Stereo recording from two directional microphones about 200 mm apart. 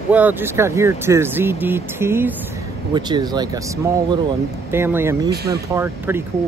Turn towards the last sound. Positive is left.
turn(degrees=-10)  # may be behind; listen again after turning